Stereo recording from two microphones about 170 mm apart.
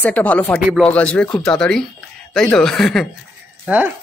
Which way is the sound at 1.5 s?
5° left (ahead or behind).